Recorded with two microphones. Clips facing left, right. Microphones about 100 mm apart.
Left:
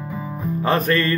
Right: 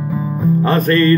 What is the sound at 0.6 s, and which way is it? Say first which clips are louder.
Music: right 4 dB; 5° left (ahead or behind).